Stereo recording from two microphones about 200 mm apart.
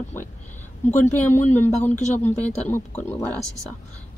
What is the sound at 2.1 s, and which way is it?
Speech, 10° left (ahead or behind).